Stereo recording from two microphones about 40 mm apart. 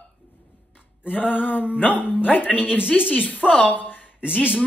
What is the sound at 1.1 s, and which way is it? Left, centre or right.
Speech, left.